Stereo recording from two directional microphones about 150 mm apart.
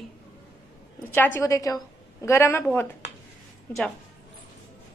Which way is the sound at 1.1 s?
15° left (ahead or behind).